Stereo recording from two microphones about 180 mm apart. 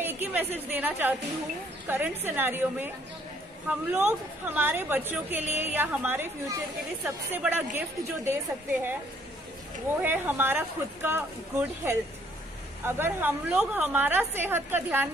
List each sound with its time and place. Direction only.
0.0 s a woman's voice: 10° right (ahead or behind)
10.0 s a woman's voice: 10° right (ahead or behind)